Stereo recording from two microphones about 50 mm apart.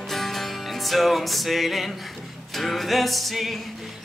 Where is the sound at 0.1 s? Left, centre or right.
Centre.